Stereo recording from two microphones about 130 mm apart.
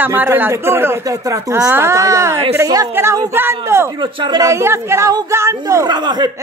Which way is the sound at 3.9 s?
35° right (ahead or behind).